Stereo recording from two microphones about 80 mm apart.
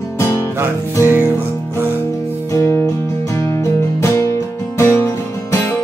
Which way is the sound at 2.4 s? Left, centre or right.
Left.